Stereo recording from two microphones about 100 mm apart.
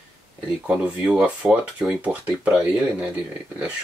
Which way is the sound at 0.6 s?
10° right (ahead or behind).